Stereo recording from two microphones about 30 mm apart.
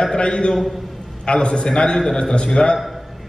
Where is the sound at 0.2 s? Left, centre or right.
Left.